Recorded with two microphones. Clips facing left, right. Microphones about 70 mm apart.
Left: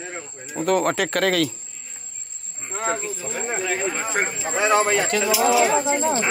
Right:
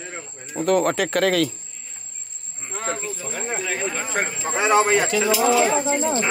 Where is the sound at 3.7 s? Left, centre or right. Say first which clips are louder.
Left 1 dB; centre.